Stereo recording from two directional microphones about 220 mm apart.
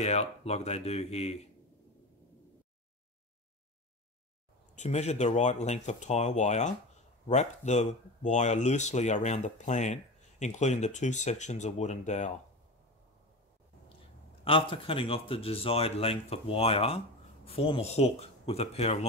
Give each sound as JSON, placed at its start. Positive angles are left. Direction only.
{"t": 0.0, "sound": "speech", "side_deg": 30}
{"t": 4.7, "sound": "speech", "side_deg": 30}
{"t": 14.4, "sound": "speech", "side_deg": 25}